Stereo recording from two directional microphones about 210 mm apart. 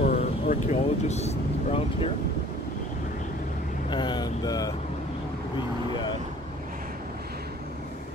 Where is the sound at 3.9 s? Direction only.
20° left (ahead or behind).